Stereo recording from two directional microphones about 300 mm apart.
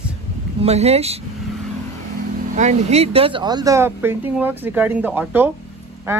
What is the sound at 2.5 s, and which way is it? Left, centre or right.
Speech, right.